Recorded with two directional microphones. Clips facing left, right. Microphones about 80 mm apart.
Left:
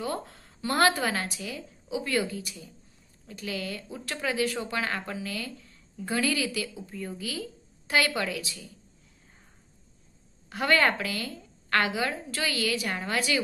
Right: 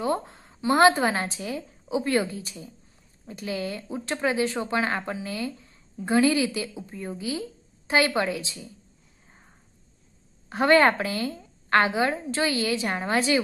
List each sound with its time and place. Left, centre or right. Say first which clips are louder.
0.0 s speech: right 6 dB; right
10.5 s speech: right 6 dB; right